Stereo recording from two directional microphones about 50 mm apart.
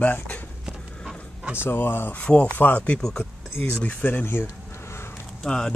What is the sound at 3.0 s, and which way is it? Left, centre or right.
Speech, centre.